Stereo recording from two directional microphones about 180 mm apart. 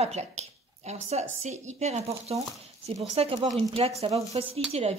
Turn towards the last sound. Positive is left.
turn(degrees=-35)  # may be behind; listen again after turning